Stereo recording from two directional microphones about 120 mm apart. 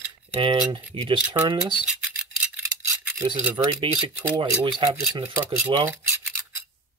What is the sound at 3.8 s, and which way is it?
Speech, 45° right (ahead or behind).